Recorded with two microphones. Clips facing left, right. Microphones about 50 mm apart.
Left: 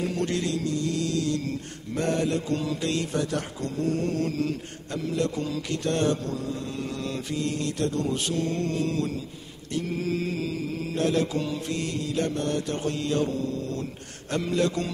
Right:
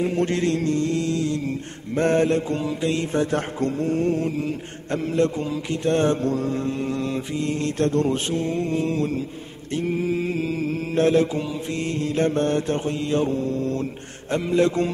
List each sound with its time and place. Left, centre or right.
0.0 s mantra: right
4.9 s mantra: right
6.3 s mantra: right
14.3 s mantra: right